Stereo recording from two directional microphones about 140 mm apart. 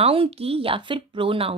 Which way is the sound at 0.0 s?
45° right (ahead or behind).